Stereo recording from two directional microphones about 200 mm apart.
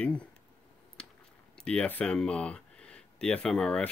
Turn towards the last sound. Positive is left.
turn(degrees=5)  # may be behind; listen again after turning